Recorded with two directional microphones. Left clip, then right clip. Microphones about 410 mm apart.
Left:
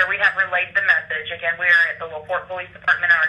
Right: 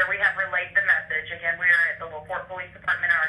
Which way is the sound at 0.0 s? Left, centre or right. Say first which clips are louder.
Left 5 dB; centre.